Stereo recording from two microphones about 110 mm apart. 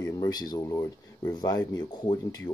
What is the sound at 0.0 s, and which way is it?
Speech, 35° left (ahead or behind).